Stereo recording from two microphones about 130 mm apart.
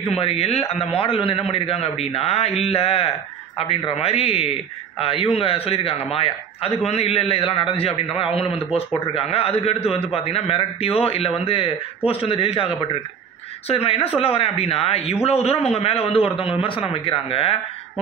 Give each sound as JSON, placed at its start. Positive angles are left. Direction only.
{"t": 0.1, "sound": "a man's voice", "side_deg": 50}